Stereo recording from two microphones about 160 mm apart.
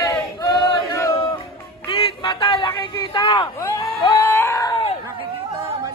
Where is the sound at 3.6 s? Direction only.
20° left (ahead or behind).